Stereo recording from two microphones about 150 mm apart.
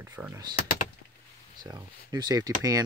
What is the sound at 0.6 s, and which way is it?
Power windows, 65° left (ahead or behind).